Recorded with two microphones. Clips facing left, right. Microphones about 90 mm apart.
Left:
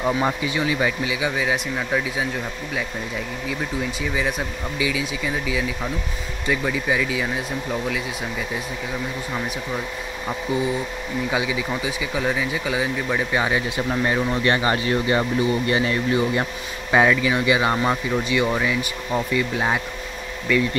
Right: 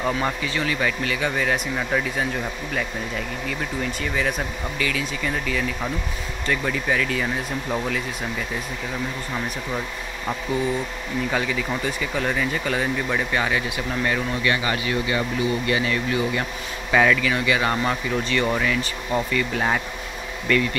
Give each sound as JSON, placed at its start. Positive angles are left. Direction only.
{"t": 0.0, "sound": "speech", "side_deg": 15}
{"t": 4.0, "sound": "speech", "side_deg": 5}
{"t": 10.5, "sound": "speech", "side_deg": 15}